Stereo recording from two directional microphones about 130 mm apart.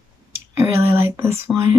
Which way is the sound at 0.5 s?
20° right (ahead or behind).